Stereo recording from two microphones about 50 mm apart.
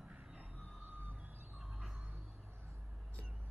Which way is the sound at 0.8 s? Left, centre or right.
Right.